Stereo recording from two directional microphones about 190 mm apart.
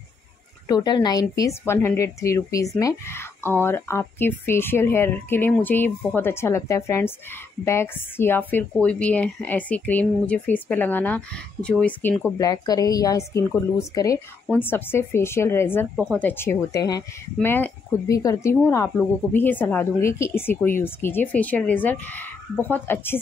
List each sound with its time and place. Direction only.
0.7 s a woman's voice: 20° left (ahead or behind)